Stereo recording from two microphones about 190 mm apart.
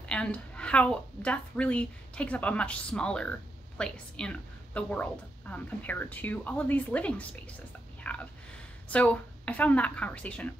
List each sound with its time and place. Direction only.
0.1 s a woman's voice: 5° left (ahead or behind)